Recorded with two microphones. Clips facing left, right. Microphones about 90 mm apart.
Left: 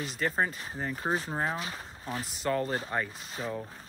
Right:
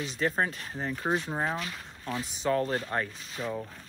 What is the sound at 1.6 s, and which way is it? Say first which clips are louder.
Speech: even; 35° left (ahead or behind).